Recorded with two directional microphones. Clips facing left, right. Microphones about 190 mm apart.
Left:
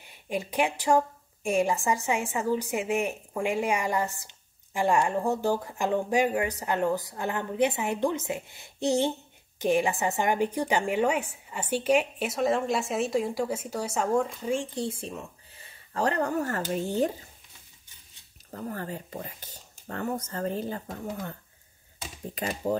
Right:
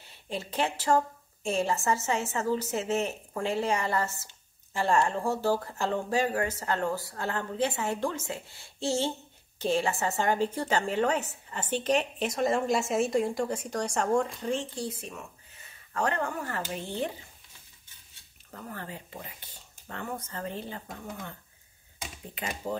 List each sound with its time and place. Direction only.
0.0 s a woman's voice: 15° left (ahead or behind)
14.8 s speech: 30° left (ahead or behind)
18.5 s speech: 40° left (ahead or behind)